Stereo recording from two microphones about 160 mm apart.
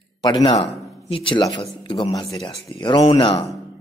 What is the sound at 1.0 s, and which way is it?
Speech, 35° left (ahead or behind).